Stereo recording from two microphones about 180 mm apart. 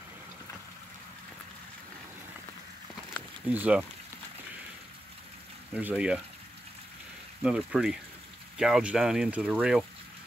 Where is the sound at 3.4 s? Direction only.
10° right (ahead or behind).